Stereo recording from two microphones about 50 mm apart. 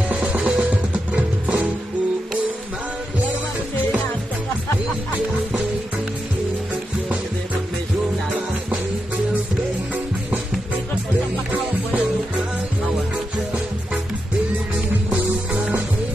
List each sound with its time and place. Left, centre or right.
0.1 s music: right